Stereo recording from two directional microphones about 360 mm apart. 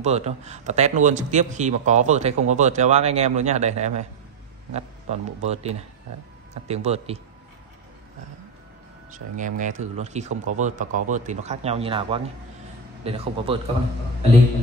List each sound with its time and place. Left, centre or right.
0.0 s a man's voice: centre
9.4 s a man's voice: right